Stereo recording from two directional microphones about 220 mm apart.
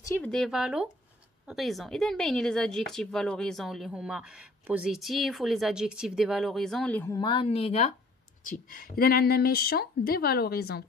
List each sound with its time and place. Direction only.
0.0 s speech: 10° left (ahead or behind); by 7.9 s 30° left (ahead or behind)
8.5 s speech: 40° left (ahead or behind)